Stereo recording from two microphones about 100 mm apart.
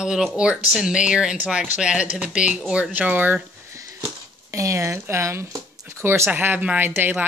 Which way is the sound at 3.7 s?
30° right (ahead or behind).